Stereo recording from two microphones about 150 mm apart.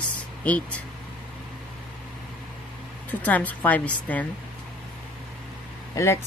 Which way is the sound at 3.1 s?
10° left (ahead or behind).